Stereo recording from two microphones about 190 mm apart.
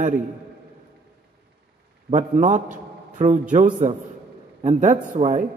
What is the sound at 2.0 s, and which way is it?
A man's voice, 40° right (ahead or behind).